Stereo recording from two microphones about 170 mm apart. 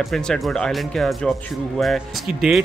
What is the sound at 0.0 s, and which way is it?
Speech, 5° left (ahead or behind).